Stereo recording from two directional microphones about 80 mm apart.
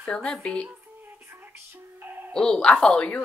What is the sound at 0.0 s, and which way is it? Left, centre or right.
Speech, centre.